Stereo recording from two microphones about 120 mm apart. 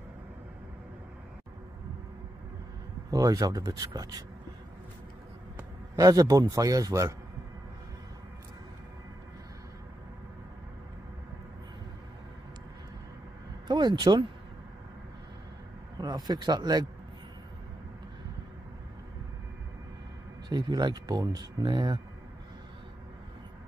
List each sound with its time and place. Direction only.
3.1 s speech: 30° right (ahead or behind)
5.9 s a man's voice: 30° right (ahead or behind)
13.7 s speech: 35° right (ahead or behind)
16.3 s speech: 35° right (ahead or behind)
20.4 s speech: 35° right (ahead or behind)